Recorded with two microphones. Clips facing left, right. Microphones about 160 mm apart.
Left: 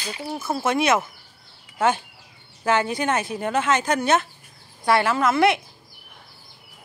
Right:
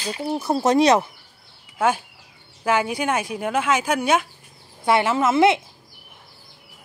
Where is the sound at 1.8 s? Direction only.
10° right (ahead or behind).